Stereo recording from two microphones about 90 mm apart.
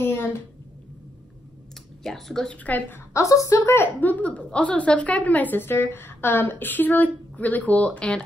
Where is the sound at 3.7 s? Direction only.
20° left (ahead or behind).